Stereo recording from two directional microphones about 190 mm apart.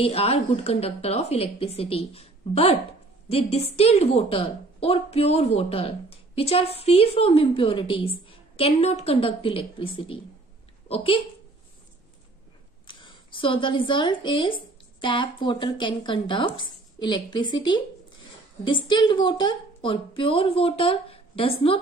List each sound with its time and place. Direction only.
0.0 s a woman's voice: 30° left (ahead or behind)
12.8 s a woman's voice: 25° left (ahead or behind)